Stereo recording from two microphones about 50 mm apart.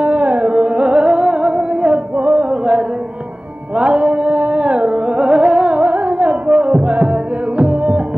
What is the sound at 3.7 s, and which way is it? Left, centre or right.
Music, right.